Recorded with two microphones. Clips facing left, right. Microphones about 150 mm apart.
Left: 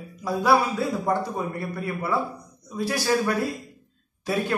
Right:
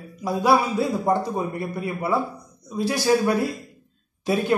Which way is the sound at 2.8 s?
20° right (ahead or behind).